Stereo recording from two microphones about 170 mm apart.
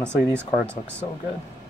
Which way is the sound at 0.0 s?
15° right (ahead or behind).